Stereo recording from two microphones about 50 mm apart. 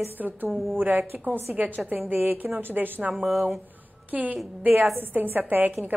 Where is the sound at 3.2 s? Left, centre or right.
Centre.